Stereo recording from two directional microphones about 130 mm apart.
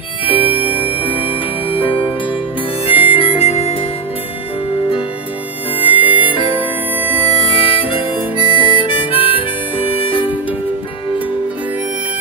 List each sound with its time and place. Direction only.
0.2 s music: 45° left (ahead or behind)
2.9 s harmonica: 10° right (ahead or behind)
3.2 s harmonica: 50° left (ahead or behind)
5.9 s music: 10° right (ahead or behind)
6.3 s music: 40° left (ahead or behind)
7.2 s harmonica: 50° left (ahead or behind)